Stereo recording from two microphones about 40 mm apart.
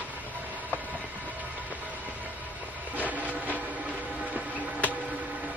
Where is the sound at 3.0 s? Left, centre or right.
Right.